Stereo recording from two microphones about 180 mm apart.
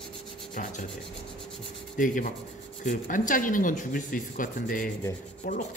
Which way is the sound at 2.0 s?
45° left (ahead or behind).